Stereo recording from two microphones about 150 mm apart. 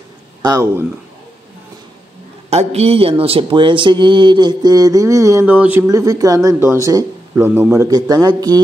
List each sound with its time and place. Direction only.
0.4 s speech: 25° right (ahead or behind)
2.5 s speech: 45° right (ahead or behind); by 5.9 s 10° right (ahead or behind)
5.9 s speech: 20° right (ahead or behind)